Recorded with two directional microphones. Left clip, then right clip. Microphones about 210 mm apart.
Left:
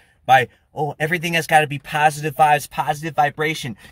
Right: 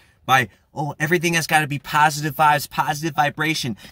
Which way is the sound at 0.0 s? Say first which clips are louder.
Left 3 dB; 10° right (ahead or behind).